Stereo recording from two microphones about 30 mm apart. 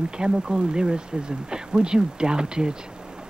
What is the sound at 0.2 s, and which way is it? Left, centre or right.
Speech, right.